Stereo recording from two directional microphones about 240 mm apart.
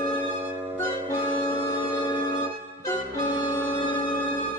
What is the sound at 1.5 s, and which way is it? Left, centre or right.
Music, centre.